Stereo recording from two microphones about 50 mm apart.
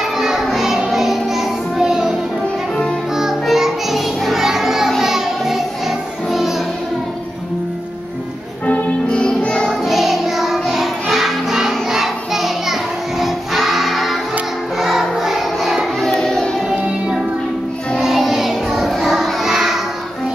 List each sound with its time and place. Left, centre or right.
0.0 s music: centre
3.2 s music: centre
8.6 s music: left
9.5 s music: centre
11.9 s child singing: centre
13.2 s music: centre
18.0 s music: centre